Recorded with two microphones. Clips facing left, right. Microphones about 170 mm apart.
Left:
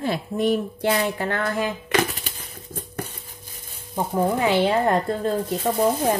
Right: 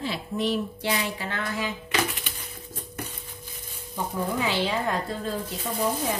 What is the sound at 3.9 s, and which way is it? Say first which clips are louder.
A woman's voice: left 6 dB; 50° left (ahead or behind).